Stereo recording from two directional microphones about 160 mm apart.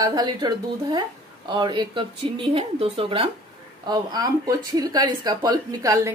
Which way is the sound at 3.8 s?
25° right (ahead or behind).